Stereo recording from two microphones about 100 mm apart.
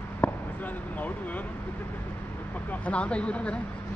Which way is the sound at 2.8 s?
10° left (ahead or behind).